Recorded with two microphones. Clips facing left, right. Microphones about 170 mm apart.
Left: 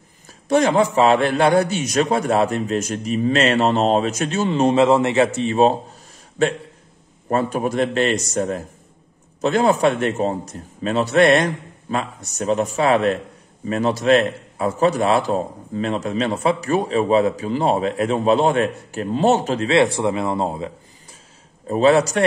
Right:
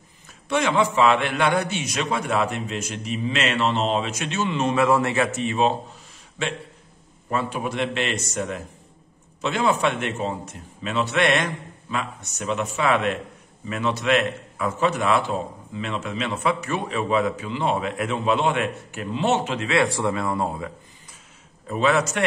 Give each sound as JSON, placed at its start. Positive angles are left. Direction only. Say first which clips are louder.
{"t": 0.3, "sound": "a man's voice", "louder": "left 6 dB", "side_deg": 40}
{"t": 19.8, "sound": "speech", "louder": "left 5 dB", "side_deg": 20}
{"t": 21.6, "sound": "a man's voice", "louder": "left 6 dB", "side_deg": 35}